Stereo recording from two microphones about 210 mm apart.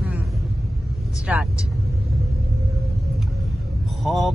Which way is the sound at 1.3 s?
5° right (ahead or behind).